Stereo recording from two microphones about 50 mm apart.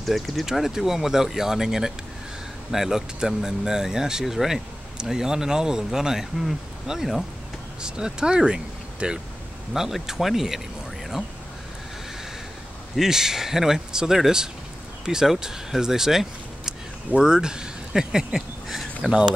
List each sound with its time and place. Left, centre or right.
0.0 s speech: centre
7.8 s speech: centre
9.8 s speech: centre
12.9 s speech: centre